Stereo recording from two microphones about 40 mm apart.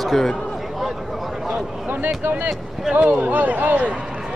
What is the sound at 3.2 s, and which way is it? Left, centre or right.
Speech, right.